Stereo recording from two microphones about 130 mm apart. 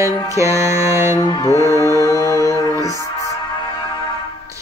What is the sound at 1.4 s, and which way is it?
Music, 25° left (ahead or behind).